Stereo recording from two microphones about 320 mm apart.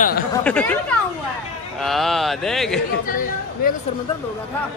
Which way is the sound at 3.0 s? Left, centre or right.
Left.